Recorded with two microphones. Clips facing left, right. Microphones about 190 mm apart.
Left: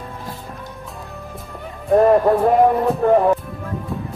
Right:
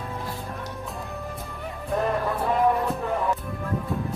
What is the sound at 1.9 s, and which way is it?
Music, 50° left (ahead or behind).